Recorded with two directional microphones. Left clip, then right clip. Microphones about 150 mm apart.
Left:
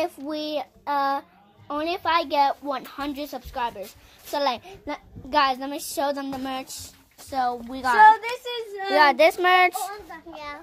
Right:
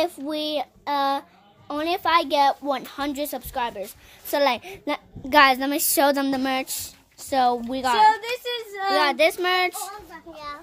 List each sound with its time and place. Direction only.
0.0 s child singing: 20° right (ahead or behind)
1.7 s a woman's voice: 25° right (ahead or behind); by 7.5 s 65° right (ahead or behind)
7.8 s a woman's voice: 20° right (ahead or behind)
8.9 s a child's voice: centre (ahead or behind); by 10.6 s 20° left (ahead or behind)